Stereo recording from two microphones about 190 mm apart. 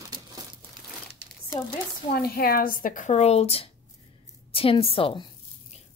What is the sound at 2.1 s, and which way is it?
A woman's voice, 55° left (ahead or behind).